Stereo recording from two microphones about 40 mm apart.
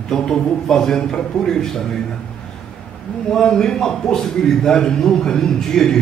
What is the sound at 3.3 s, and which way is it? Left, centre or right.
A man's voice, centre.